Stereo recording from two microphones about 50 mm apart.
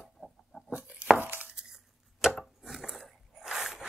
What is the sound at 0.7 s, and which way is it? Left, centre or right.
Chopping, right.